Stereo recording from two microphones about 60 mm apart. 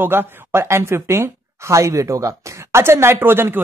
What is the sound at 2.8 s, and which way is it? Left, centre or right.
Speech, right.